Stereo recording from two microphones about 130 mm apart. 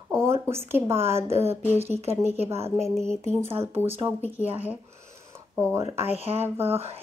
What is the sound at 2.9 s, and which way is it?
Speech, 5° left (ahead or behind).